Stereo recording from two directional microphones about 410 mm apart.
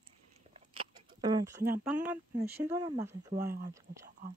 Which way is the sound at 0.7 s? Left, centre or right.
Centre.